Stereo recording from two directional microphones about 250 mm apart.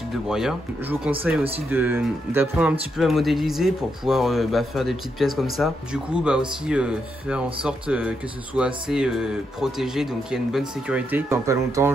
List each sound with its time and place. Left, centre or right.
0.3 s speech: centre